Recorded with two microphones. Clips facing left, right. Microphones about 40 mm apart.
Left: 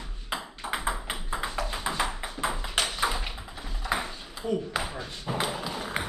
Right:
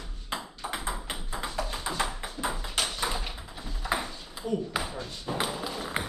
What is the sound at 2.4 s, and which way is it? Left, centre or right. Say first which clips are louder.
Ping: left 2 dB; left.